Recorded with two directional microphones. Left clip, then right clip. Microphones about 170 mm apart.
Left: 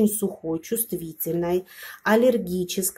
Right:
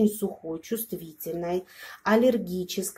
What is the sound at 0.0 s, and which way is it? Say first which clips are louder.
Speech: left 2 dB; 25° left (ahead or behind).